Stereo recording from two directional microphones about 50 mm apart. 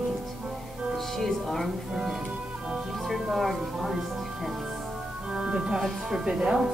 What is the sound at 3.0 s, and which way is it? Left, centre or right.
Speech, centre.